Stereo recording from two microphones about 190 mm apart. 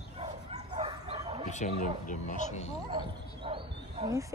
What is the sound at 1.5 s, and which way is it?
Speech, 40° left (ahead or behind).